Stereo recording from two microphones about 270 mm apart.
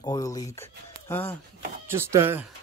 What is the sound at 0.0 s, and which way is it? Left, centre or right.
Speech, centre.